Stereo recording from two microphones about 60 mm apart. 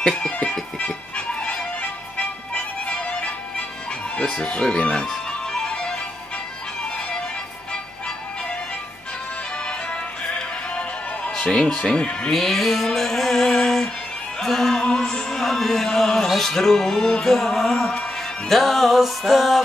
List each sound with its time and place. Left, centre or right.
0.0 s music: centre
4.2 s speech: centre
5.0 s music: centre
9.7 s music: centre
12.3 s music: centre